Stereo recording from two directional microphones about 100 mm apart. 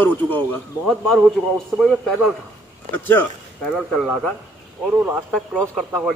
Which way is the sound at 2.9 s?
20° left (ahead or behind).